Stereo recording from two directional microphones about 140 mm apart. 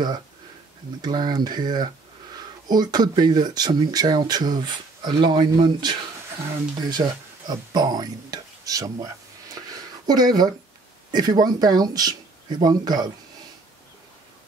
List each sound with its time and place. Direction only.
1.0 s speech: 30° right (ahead or behind)